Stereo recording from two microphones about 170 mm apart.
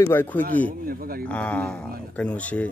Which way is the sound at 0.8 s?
60° right (ahead or behind).